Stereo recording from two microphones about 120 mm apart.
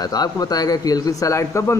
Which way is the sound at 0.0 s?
35° left (ahead or behind).